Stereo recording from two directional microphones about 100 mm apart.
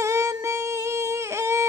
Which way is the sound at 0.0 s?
30° right (ahead or behind).